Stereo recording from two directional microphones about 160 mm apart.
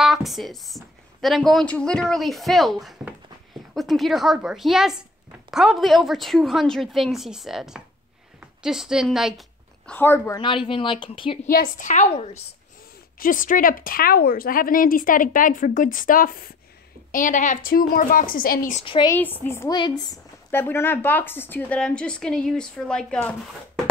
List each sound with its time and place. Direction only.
0.0 s a woman's voice: centre (ahead or behind)
8.4 s a sound: 5° right (ahead or behind)
9.9 s a woman's voice: 15° left (ahead or behind)
10.3 s a woman's voice: 30° left (ahead or behind)
11.4 s a woman's voice: 60° left (ahead or behind)
17.1 s a woman's voice: 55° left (ahead or behind)
18.8 s a woman's voice: 35° left (ahead or behind)
19.0 s a woman's voice: 10° left (ahead or behind)
19.7 s speech: 30° left (ahead or behind)
20.5 s a woman's voice: 15° left (ahead or behind)